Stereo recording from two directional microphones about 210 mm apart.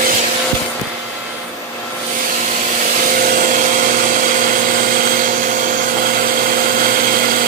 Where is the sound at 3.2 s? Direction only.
40° right (ahead or behind).